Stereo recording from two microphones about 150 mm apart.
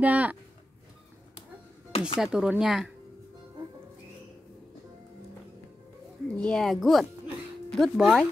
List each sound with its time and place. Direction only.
0.0 s speech: 10° right (ahead or behind)
1.9 s music: 40° left (ahead or behind)
2.1 s speech: 5° right (ahead or behind)
6.3 s speech: 5° left (ahead or behind)